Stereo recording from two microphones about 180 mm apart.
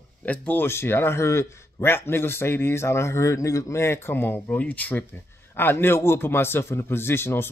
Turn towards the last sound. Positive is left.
turn(degrees=15)  # may be behind; listen again after turning